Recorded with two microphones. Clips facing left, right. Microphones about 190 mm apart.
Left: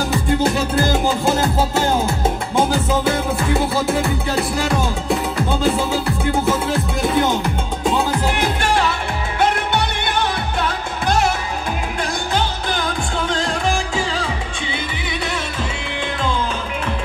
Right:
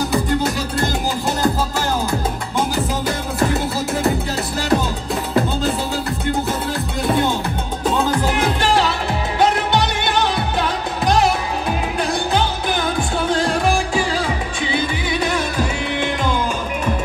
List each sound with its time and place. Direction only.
1.0 s music: 25° left (ahead or behind)
6.7 s music: 25° left (ahead or behind)